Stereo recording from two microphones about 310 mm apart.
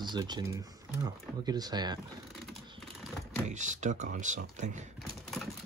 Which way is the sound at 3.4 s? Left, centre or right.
Right.